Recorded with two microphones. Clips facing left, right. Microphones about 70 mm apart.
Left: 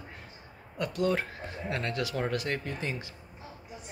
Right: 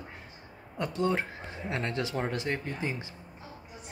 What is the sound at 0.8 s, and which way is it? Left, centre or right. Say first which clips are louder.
Speech: even; right.